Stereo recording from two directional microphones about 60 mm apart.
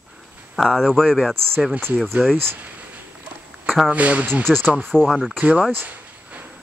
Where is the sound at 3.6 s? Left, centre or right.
Centre.